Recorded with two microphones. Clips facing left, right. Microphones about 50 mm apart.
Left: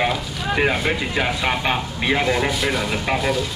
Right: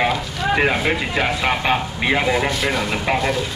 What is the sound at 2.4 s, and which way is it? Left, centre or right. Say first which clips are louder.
Speech: right 1 dB; centre.